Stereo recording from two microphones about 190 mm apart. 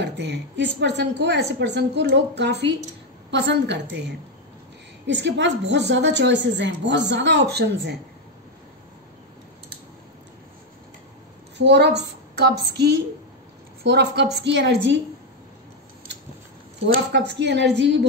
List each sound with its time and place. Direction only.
0.0 s a woman's voice: 65° right (ahead or behind)
11.5 s a woman's voice: 65° right (ahead or behind)
16.8 s a woman's voice: 65° right (ahead or behind)